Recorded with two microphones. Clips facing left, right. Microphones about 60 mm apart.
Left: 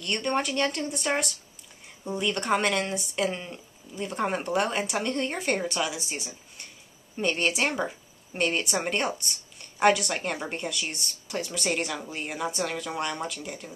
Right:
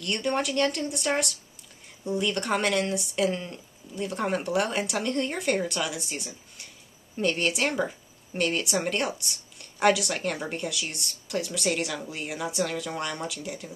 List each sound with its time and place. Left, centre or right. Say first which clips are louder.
0.0 s a woman's voice: even; centre
3.3 s a woman's voice: right 2 dB; centre